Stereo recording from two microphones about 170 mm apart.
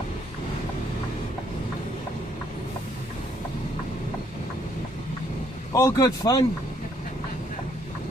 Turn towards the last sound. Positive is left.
turn(degrees=20)  # may be behind; listen again after turning